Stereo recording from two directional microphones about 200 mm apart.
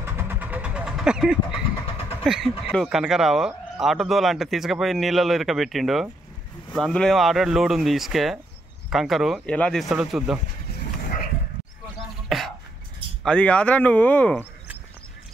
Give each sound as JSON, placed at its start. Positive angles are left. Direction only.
{"t": 0.0, "sound": "vehicle", "side_deg": -10}
{"t": 2.2, "sound": "speech", "side_deg": 0}
{"t": 12.3, "sound": "throat clearing", "side_deg": 0}
{"t": 13.2, "sound": "speech", "side_deg": 5}